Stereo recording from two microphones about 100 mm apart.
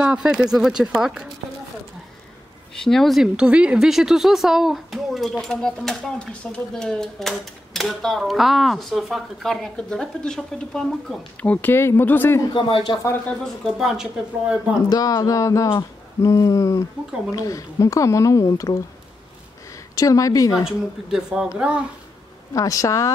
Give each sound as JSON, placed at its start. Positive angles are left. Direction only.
{"t": 0.0, "sound": "speech", "side_deg": -10}
{"t": 2.7, "sound": "speech", "side_deg": 5}
{"t": 11.5, "sound": "speech", "side_deg": 20}
{"t": 12.5, "sound": "speech", "side_deg": 60}
{"t": 13.4, "sound": "speech", "side_deg": 0}
{"t": 14.9, "sound": "a woman's voice", "side_deg": 35}
{"t": 20.6, "sound": "speech", "side_deg": -5}
{"t": 22.5, "sound": "a woman's voice", "side_deg": 35}